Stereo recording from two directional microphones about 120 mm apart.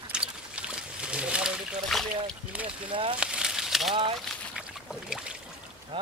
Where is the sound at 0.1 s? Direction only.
5° right (ahead or behind).